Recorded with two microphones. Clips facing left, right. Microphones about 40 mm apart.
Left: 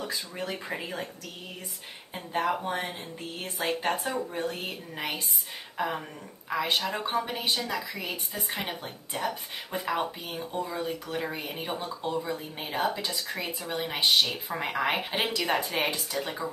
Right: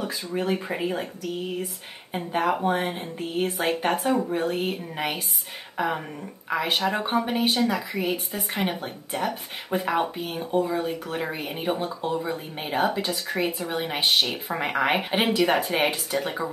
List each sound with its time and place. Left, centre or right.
0.4 s a woman's voice: right
2.1 s a woman's voice: right